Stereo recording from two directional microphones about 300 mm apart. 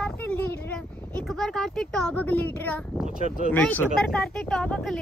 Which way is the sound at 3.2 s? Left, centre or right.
Right.